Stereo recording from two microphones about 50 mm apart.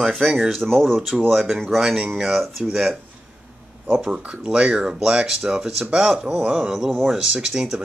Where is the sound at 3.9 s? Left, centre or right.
Right.